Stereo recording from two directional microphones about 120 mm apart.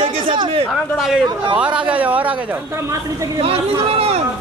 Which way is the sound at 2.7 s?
25° right (ahead or behind).